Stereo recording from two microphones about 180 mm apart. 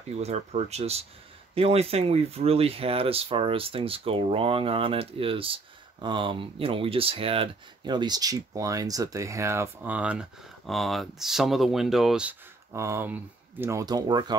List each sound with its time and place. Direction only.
0.2 s speech: 35° right (ahead or behind)